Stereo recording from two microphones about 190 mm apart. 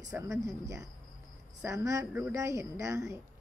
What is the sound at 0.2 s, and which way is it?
A woman's voice, 15° right (ahead or behind).